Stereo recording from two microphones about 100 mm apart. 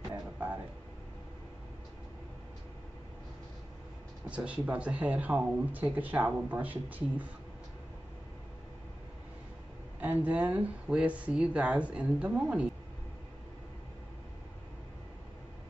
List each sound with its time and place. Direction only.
4.3 s speech: 15° right (ahead or behind)
9.9 s speech: 15° right (ahead or behind)